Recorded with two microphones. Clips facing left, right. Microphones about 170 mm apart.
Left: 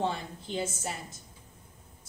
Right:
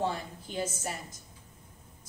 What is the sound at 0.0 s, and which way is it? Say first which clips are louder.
Speech: left 1 dB; 25° left (ahead or behind).